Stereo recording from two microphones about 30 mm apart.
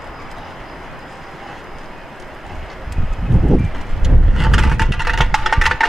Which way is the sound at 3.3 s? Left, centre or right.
Centre.